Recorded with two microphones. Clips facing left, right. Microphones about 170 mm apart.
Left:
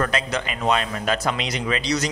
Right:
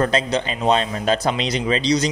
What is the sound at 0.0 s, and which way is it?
A man's voice, 30° right (ahead or behind).